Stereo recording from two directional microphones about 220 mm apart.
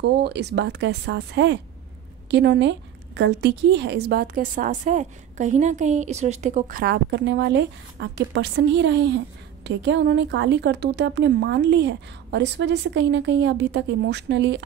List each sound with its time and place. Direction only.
0.0 s a woman's voice: 50° right (ahead or behind)